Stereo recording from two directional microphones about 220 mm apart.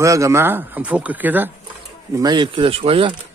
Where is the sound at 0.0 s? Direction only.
15° right (ahead or behind).